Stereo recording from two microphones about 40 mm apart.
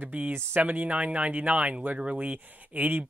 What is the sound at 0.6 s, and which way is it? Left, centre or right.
Speech, right.